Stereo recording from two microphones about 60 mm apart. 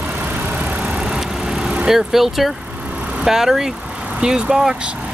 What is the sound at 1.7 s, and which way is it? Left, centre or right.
Speech, centre.